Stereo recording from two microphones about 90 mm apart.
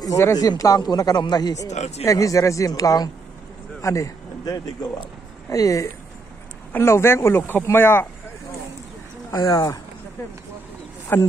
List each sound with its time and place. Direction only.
0.0 s a man's voice: 40° left (ahead or behind)
9.3 s speech: 40° left (ahead or behind)
11.1 s speech: 25° left (ahead or behind)